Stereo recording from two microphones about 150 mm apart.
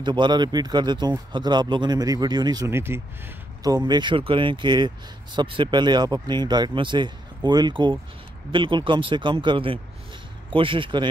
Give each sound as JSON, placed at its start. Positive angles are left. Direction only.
{"t": 0.0, "sound": "speech", "side_deg": -30}